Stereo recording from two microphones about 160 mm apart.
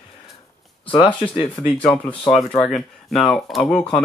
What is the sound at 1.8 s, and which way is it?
Speech, 5° left (ahead or behind).